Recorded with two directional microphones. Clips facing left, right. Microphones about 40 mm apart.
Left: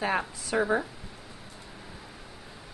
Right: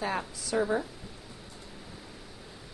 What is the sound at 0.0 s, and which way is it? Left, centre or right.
Speech, left.